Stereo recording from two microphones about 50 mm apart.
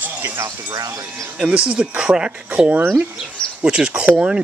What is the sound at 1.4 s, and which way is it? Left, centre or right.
Speech, right.